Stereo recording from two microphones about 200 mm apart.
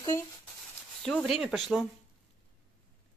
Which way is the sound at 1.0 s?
Centre (ahead or behind).